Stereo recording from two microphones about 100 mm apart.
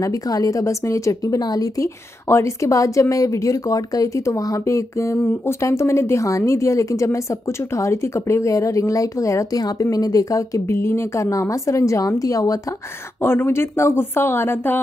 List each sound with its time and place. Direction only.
0.0 s a woman's voice: 35° left (ahead or behind)
13.2 s speech: 25° left (ahead or behind)